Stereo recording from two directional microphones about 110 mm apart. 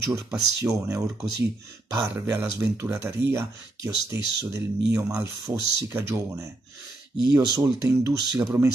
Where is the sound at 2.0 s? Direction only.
25° right (ahead or behind).